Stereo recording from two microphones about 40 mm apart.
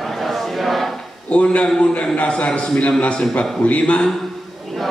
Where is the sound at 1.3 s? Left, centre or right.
Left.